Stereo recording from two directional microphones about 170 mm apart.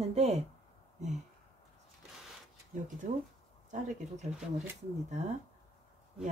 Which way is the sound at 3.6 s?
45° right (ahead or behind).